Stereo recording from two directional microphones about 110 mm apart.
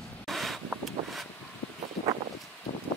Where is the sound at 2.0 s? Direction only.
65° left (ahead or behind).